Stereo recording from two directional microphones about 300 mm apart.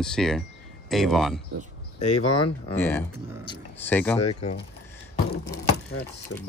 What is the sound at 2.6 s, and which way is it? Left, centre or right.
Speech, centre.